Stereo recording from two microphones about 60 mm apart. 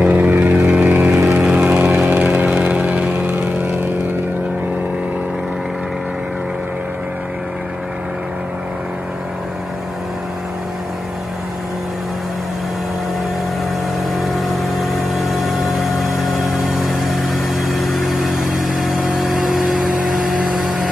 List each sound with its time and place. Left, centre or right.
0.0 s vehicle: right
0.8 s vehicle: right
1.2 s vehicle: centre
14.8 s vehicle: centre